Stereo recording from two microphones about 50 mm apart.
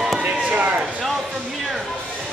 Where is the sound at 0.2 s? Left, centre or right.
Right.